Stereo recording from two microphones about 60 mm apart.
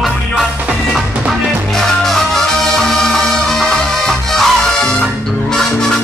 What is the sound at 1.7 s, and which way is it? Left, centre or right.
Music, centre.